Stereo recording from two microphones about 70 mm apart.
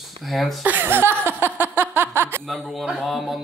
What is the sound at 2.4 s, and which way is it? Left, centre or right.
Speech, centre.